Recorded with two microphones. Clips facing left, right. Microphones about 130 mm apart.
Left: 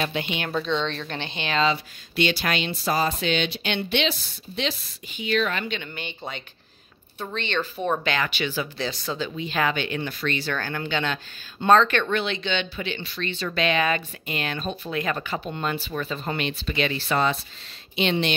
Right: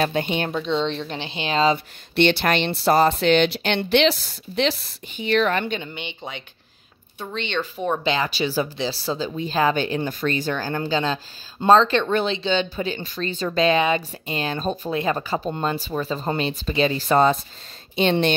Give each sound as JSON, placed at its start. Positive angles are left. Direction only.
{"t": 0.0, "sound": "speech", "side_deg": -45}
{"t": 0.7, "sound": "a woman's voice", "side_deg": -25}
{"t": 1.4, "sound": "speech", "side_deg": -35}
{"t": 2.1, "sound": "speech", "side_deg": -60}
{"t": 4.1, "sound": "speech", "side_deg": -80}
{"t": 5.1, "sound": "speech", "side_deg": -50}
{"t": 5.9, "sound": "speech", "side_deg": -15}
{"t": 8.0, "sound": "speech", "side_deg": -30}
{"t": 10.4, "sound": "a woman's voice", "side_deg": -20}
{"t": 10.7, "sound": "a woman's voice", "side_deg": -35}